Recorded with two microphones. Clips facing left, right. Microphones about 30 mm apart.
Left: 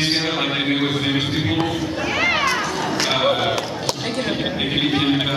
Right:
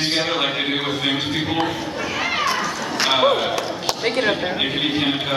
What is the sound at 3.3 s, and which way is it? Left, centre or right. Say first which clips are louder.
Speech: left 1 dB; centre.